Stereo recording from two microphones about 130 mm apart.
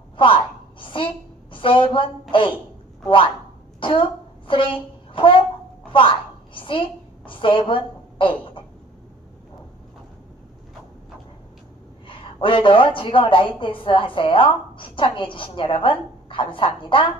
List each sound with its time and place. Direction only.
0.2 s a sound: 40° left (ahead or behind)
1.5 s a woman's voice: 40° left (ahead or behind)
3.8 s a woman's voice: 40° left (ahead or behind)
12.1 s a woman's voice: 40° left (ahead or behind)